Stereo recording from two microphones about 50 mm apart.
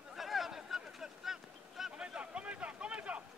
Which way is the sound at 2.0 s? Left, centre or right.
Right.